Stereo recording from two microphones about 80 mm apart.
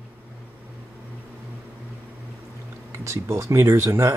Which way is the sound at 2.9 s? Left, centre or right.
Right.